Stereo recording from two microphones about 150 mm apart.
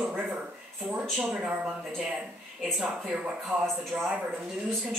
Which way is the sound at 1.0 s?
Centre (ahead or behind).